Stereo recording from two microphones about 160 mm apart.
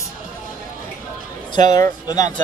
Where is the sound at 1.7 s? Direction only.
20° left (ahead or behind).